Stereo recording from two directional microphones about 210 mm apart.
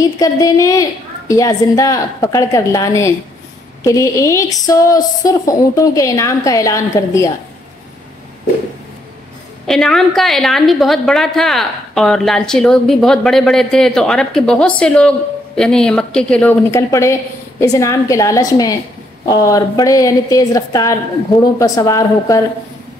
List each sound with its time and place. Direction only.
0.0 s speech: 15° left (ahead or behind)
9.7 s a woman's voice: centre (ahead or behind)